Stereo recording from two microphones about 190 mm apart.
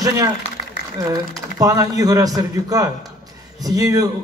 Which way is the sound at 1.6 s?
20° right (ahead or behind).